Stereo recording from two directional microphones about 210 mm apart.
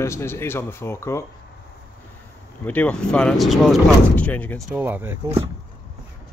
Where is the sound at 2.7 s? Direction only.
5° left (ahead or behind).